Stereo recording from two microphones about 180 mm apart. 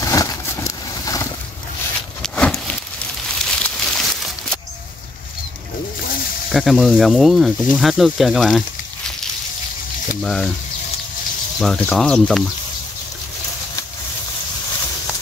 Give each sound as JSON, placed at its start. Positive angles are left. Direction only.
{"t": 0.0, "sound": "vehicle", "side_deg": 20}
{"t": 2.2, "sound": "a sound", "side_deg": 5}
{"t": 6.5, "sound": "speech", "side_deg": 0}
{"t": 10.2, "sound": "speech", "side_deg": 0}
{"t": 11.6, "sound": "speech", "side_deg": 5}